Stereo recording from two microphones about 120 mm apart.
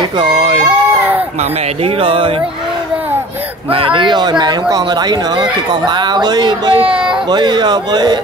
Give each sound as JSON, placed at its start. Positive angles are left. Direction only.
{"t": 0.2, "sound": "speech", "side_deg": -45}
{"t": 2.0, "sound": "speech", "side_deg": -45}
{"t": 3.7, "sound": "speech", "side_deg": -45}
{"t": 6.9, "sound": "speech", "side_deg": -10}
{"t": 7.2, "sound": "speech", "side_deg": -35}